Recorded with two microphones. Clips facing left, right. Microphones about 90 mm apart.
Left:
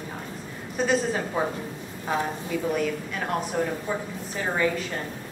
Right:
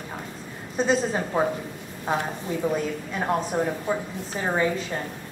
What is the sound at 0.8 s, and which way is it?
Speech, 25° right (ahead or behind).